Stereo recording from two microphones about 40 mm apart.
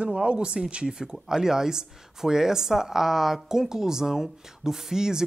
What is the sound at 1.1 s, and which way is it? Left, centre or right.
Speech, centre.